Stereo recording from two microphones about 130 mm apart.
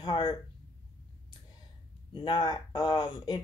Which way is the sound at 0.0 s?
40° left (ahead or behind).